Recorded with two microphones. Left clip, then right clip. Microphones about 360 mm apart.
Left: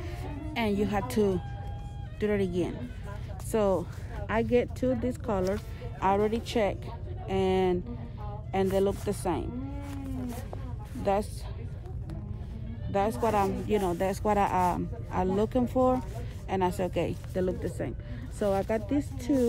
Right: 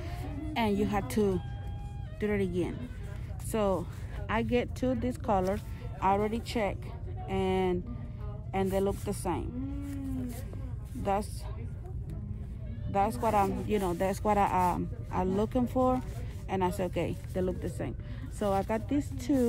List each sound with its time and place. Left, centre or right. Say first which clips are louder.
0.2 s speech: even; centre
12.9 s speech: left 1 dB; centre